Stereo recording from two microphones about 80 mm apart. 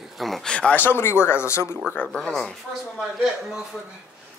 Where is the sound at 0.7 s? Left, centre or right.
Left.